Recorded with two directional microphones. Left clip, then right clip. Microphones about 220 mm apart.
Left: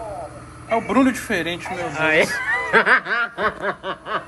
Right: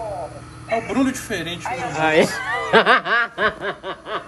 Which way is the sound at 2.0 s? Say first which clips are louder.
Right 1 dB; 45° right (ahead or behind).